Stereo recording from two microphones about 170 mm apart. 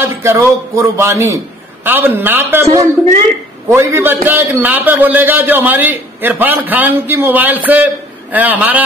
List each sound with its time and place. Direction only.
0.0 s a man's voice: 15° right (ahead or behind)